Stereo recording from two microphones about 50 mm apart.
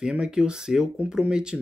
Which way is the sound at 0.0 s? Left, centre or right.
Centre.